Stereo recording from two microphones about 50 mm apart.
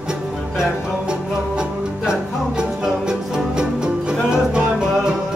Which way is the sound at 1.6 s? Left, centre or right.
Centre.